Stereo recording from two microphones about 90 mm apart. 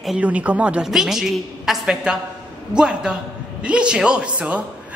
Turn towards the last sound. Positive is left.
turn(degrees=-15)  # may be behind; listen again after turning